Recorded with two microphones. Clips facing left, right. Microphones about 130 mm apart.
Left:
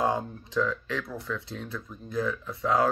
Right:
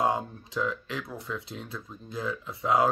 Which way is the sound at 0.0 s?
15° right (ahead or behind).